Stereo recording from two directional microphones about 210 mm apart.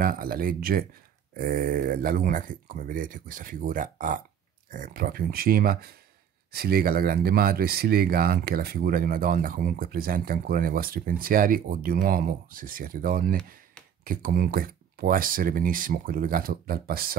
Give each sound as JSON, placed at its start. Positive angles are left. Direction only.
{"t": 0.0, "sound": "speech", "side_deg": -45}